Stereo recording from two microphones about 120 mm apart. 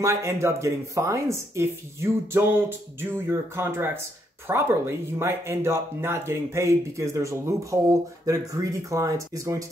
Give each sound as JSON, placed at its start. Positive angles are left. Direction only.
{"t": 0.0, "sound": "speech", "side_deg": -25}